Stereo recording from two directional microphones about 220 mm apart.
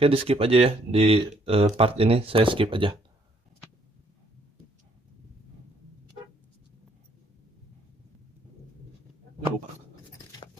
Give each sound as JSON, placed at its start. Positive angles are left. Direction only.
{"t": 0.0, "sound": "speech", "side_deg": -25}